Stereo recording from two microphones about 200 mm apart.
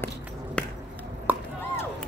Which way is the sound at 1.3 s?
10° right (ahead or behind).